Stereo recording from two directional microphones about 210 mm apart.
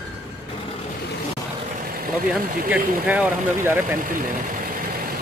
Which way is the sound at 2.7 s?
10° right (ahead or behind).